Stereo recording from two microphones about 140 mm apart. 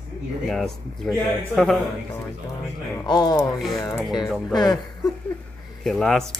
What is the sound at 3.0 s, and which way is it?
Speech, 30° left (ahead or behind).